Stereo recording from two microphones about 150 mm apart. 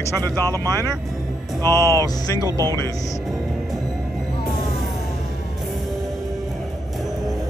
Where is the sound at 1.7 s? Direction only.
20° left (ahead or behind).